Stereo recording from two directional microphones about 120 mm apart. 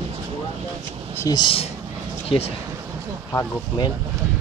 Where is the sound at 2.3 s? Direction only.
50° left (ahead or behind).